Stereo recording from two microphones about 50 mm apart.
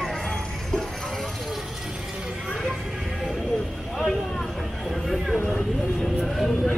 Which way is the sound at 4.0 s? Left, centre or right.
Centre.